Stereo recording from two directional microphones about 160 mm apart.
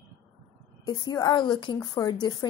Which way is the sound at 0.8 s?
25° left (ahead or behind).